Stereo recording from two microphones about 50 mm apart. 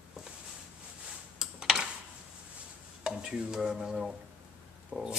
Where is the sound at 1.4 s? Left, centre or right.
Centre.